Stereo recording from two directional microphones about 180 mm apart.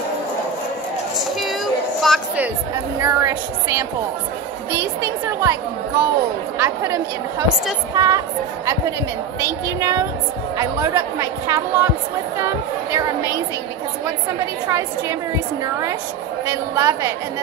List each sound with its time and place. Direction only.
2.0 s speech: centre (ahead or behind)
3.0 s a woman's voice: 15° right (ahead or behind)
5.0 s a woman's voice: 15° right (ahead or behind)
9.4 s a woman's voice: 15° right (ahead or behind)
14.4 s a woman's voice: 15° right (ahead or behind)
16.4 s a woman's voice: 15° right (ahead or behind)